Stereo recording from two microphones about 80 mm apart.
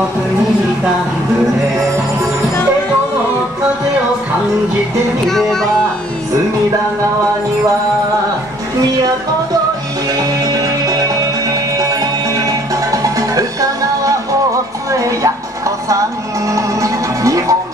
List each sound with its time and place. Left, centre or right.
5.2 s music: centre
10.1 s music: right
16.4 s music: right